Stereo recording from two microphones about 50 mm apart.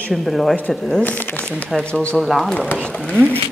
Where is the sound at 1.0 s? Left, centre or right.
Left.